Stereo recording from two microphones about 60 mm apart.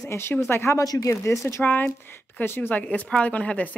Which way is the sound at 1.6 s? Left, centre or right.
Left.